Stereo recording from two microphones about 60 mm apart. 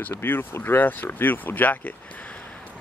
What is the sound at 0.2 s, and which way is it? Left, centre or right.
Speech, left.